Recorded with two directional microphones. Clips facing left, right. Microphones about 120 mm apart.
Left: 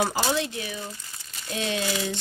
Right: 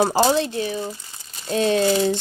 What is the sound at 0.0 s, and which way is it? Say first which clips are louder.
Speech: right 7 dB; 35° right (ahead or behind).